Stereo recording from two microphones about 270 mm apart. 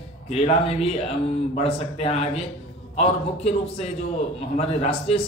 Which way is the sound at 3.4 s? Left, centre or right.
Left.